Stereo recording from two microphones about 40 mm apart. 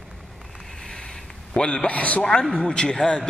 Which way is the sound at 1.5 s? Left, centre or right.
Left.